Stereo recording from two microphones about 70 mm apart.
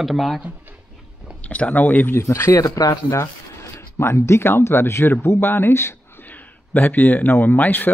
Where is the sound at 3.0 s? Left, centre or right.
Left.